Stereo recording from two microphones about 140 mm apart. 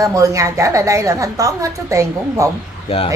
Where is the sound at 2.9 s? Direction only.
45° left (ahead or behind).